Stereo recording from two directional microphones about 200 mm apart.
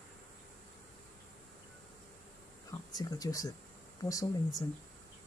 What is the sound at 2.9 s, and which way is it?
Speech, 20° left (ahead or behind).